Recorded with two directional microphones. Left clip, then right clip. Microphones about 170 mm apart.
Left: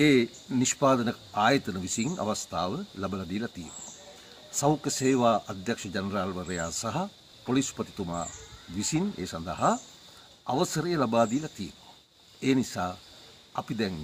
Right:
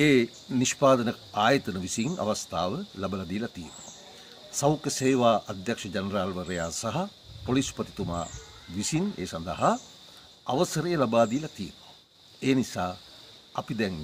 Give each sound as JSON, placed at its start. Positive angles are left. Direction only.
{"t": 0.0, "sound": "speech", "side_deg": -15}
{"t": 4.6, "sound": "speech", "side_deg": -15}